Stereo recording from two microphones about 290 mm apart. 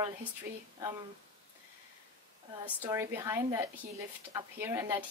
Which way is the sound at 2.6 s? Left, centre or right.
Centre.